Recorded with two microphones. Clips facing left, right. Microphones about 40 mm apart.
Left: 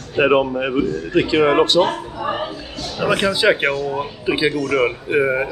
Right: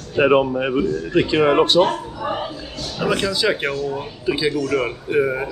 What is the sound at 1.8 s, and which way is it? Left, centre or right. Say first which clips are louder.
Speech: even; left.